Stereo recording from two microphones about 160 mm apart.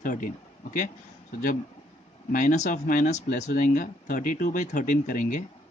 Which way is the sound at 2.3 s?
55° left (ahead or behind).